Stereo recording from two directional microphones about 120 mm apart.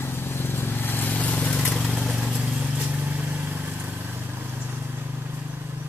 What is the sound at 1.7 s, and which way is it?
Vehicle, centre (ahead or behind).